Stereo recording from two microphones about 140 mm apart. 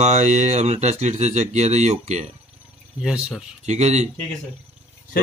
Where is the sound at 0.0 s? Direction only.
55° right (ahead or behind).